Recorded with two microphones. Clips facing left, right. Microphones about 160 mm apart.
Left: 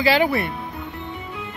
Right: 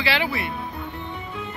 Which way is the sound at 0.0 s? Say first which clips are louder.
Left 6 dB; 45° left (ahead or behind).